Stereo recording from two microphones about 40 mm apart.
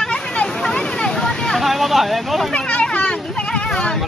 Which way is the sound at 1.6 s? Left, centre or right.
Centre.